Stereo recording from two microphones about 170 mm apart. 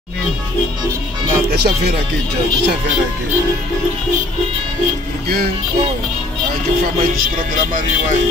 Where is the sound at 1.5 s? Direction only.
70° right (ahead or behind).